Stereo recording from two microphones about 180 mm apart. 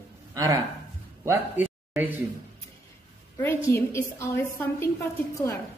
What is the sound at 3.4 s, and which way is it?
A woman's voice, 15° left (ahead or behind).